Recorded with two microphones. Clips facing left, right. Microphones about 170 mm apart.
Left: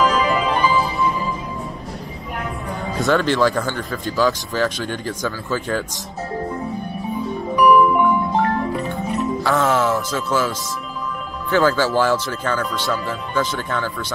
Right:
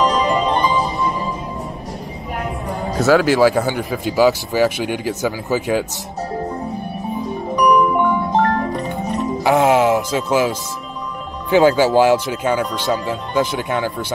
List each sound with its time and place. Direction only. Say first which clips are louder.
0.2 s music: right 2 dB; 5° left (ahead or behind)
2.7 s speech: right 5 dB; 5° right (ahead or behind)
7.5 s music: left 1 dB; 5° left (ahead or behind)
7.9 s marimba: right 1 dB; 35° right (ahead or behind)
9.4 s speech: right 6 dB; 10° right (ahead or behind)
11.5 s speech: right 5 dB; 15° right (ahead or behind)